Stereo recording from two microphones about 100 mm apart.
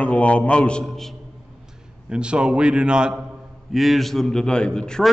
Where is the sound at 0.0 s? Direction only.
15° left (ahead or behind).